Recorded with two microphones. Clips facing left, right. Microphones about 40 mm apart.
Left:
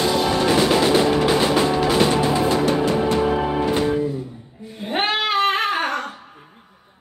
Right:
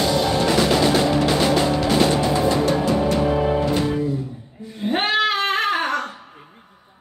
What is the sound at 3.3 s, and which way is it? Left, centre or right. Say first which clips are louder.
Music: right 1 dB; centre.